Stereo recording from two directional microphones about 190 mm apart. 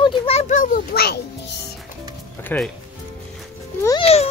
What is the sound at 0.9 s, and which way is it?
Music, 55° left (ahead or behind).